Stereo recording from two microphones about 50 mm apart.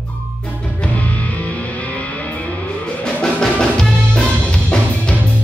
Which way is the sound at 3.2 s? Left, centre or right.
Centre.